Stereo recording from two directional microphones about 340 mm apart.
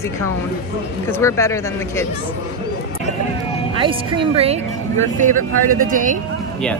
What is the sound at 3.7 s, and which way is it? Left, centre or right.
Speech, centre.